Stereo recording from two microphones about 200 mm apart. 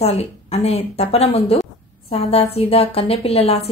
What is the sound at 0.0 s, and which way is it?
A woman's voice, 30° left (ahead or behind).